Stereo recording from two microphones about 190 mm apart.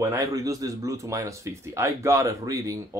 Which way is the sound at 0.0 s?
15° right (ahead or behind).